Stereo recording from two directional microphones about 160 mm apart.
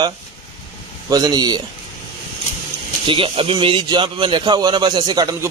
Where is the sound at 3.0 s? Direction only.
35° right (ahead or behind).